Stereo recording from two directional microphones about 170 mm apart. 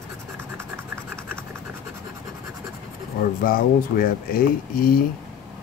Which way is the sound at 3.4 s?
60° left (ahead or behind).